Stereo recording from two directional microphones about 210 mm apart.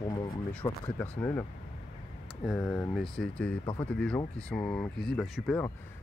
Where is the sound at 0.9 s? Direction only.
10° left (ahead or behind).